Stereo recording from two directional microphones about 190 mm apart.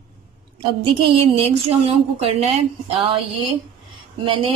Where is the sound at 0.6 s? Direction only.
30° right (ahead or behind).